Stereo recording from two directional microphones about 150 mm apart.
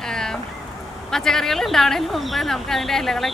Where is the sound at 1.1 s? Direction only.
5° left (ahead or behind).